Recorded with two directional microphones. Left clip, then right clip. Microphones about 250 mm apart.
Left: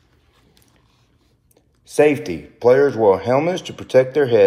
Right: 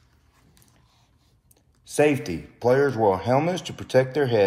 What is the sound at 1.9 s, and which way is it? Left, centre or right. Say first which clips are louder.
A man's voice: left 6 dB; centre.